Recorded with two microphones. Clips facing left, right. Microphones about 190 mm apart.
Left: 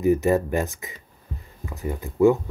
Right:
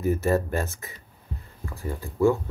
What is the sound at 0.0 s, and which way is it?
Speech, 15° left (ahead or behind).